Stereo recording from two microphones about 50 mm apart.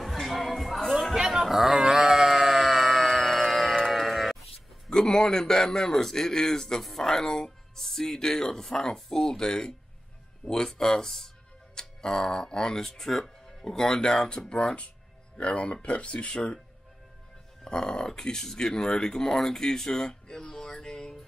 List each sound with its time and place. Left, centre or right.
0.0 s music: centre
1.1 s sheep: centre
4.8 s a man's voice: centre
15.3 s speech: left
17.6 s a man's voice: centre
20.8 s music: centre